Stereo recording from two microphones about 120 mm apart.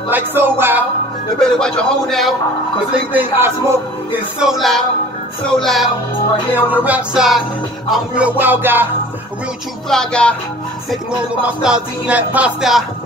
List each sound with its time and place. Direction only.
0.1 s music: 20° right (ahead or behind)
1.4 s a man's voice: 5° left (ahead or behind)
2.9 s music: 15° right (ahead or behind)
4.4 s a man's voice: centre (ahead or behind)
6.5 s music: 15° right (ahead or behind)
9.8 s music: 5° left (ahead or behind)
10.9 s music: 5° right (ahead or behind)